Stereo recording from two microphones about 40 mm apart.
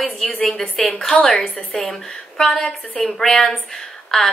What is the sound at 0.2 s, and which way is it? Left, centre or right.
A woman's voice, centre.